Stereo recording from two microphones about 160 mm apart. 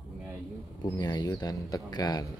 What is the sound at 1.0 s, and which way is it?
Speech, 25° left (ahead or behind).